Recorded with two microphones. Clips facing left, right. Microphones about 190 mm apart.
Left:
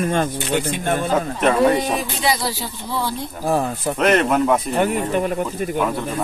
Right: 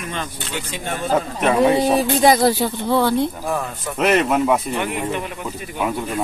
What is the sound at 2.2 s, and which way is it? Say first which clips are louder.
Speech: right 9 dB; 50° right (ahead or behind).